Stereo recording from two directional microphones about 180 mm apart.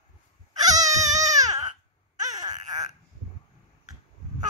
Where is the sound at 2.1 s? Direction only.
20° right (ahead or behind).